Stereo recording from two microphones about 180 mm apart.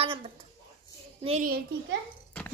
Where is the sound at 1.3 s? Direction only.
40° right (ahead or behind).